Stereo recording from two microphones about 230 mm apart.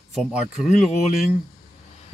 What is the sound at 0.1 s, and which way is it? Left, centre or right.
Speech, centre.